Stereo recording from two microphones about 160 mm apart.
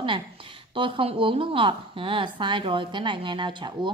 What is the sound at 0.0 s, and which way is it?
A woman's voice, 30° right (ahead or behind).